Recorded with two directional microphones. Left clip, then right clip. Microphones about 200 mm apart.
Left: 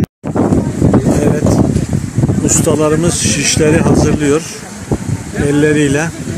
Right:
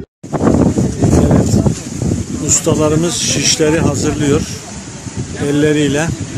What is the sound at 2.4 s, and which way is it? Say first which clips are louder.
A man's voice: left 1 dB; centre (ahead or behind).